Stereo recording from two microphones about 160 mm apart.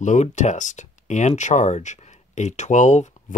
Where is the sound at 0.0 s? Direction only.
50° left (ahead or behind).